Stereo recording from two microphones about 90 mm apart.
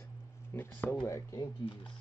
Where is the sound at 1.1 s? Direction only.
35° left (ahead or behind).